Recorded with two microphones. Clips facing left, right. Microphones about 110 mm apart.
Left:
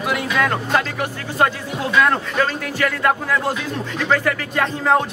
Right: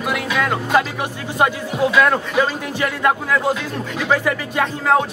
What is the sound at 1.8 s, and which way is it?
Speech, 5° right (ahead or behind).